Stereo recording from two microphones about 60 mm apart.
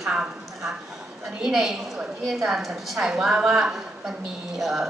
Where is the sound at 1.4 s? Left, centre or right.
Centre.